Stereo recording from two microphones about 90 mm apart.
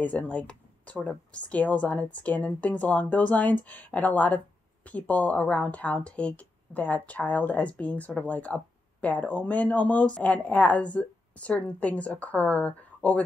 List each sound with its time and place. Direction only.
0.0 s speech: 15° left (ahead or behind)